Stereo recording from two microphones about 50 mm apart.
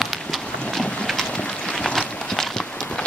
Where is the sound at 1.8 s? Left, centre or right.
Centre.